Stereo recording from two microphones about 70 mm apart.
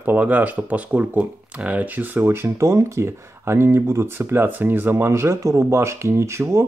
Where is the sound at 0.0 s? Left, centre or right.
Right.